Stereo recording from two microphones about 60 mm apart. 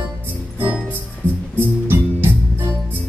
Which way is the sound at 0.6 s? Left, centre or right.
Right.